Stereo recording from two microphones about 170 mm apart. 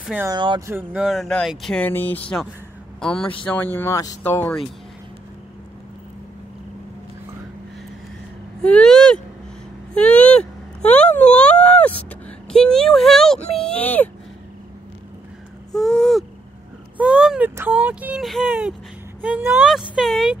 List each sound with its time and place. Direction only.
0.0 s speech: 10° right (ahead or behind)
0.3 s speech: 25° right (ahead or behind)
0.7 s speech: 10° right (ahead or behind)
1.0 s speech: centre (ahead or behind)
8.6 s speech: 5° left (ahead or behind)
10.8 s speech: 40° left (ahead or behind)
11.3 s a sound: 5° left (ahead or behind)
12.4 s speech: 5° left (ahead or behind)
15.7 s speech: 5° left (ahead or behind)